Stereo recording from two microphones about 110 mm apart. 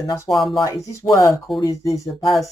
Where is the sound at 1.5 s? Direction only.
Centre (ahead or behind).